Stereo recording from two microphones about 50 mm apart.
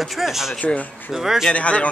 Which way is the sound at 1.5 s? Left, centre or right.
Left.